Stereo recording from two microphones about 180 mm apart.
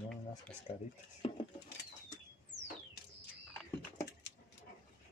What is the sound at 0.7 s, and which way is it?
Speech, 35° left (ahead or behind).